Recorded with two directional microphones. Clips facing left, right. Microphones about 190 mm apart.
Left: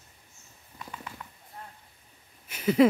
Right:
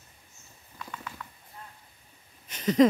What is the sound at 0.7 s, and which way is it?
Clip-clop, 25° left (ahead or behind).